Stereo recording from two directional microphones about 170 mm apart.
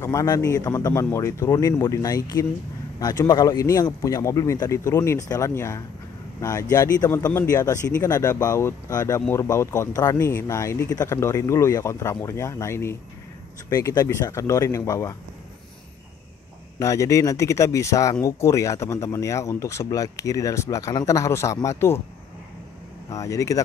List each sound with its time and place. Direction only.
0.0 s speech: 20° left (ahead or behind)
16.7 s speech: 20° left (ahead or behind)
23.0 s speech: 20° left (ahead or behind)